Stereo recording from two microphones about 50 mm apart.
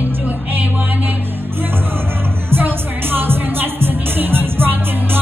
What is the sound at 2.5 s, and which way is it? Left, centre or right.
Music, right.